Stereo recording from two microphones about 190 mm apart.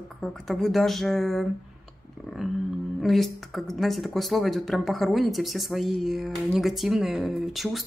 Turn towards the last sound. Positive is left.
turn(degrees=0)  # may be behind; listen again after turning